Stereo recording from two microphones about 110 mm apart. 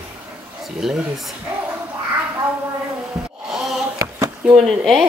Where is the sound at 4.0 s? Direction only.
35° right (ahead or behind).